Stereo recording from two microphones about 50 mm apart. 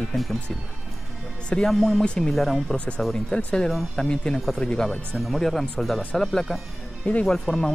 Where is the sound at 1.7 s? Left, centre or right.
Centre.